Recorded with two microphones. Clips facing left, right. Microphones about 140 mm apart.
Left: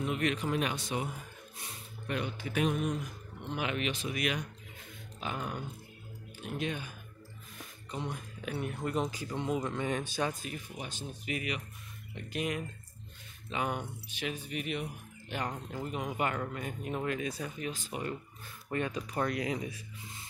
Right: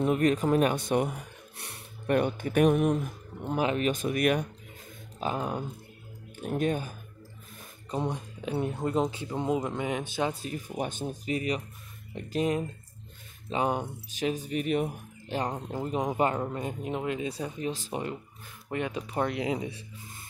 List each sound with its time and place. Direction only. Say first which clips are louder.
0.0 s speech: right 8 dB; 45° right (ahead or behind)
3.5 s speech: right 7 dB; 35° right (ahead or behind); by 4.5 s 50° right (ahead or behind)
5.2 s speech: right 7 dB; 35° right (ahead or behind)
6.4 s speech: right 8 dB; 45° right (ahead or behind)
8.1 s speech: right 6 dB; 25° right (ahead or behind)
10.3 s speech: right 6 dB; 35° right (ahead or behind)
10.8 s speech: right 10 dB; 50° right (ahead or behind)
11.2 s speech: right 6 dB; 35° right (ahead or behind)
15.3 s speech: right 6 dB; 35° right (ahead or behind)
18.7 s speech: right 2 dB; 20° right (ahead or behind)